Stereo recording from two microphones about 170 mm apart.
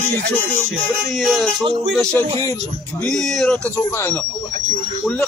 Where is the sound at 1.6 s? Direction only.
25° right (ahead or behind).